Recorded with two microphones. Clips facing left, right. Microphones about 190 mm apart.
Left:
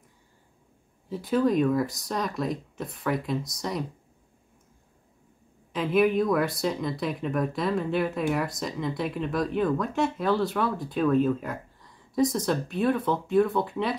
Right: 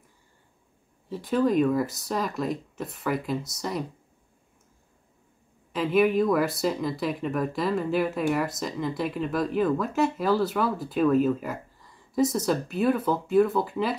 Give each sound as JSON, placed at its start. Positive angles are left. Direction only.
{"t": 1.0, "sound": "speech", "side_deg": 0}
{"t": 5.7, "sound": "speech", "side_deg": 0}